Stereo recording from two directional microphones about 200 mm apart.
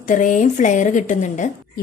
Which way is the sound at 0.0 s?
40° left (ahead or behind).